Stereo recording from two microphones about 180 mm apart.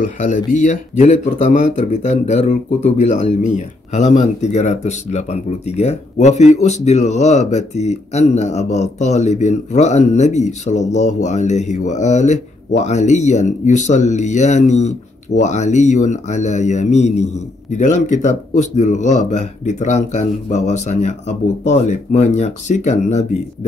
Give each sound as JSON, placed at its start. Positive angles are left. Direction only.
{"t": 0.9, "sound": "speech", "side_deg": 40}